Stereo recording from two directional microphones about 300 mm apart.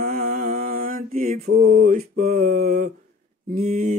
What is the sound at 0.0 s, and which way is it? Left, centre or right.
Mantra, right.